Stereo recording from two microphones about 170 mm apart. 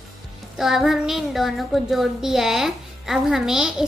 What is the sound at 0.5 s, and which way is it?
A child's voice, centre (ahead or behind).